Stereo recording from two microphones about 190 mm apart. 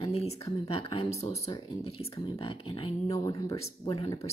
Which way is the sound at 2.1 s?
20° left (ahead or behind).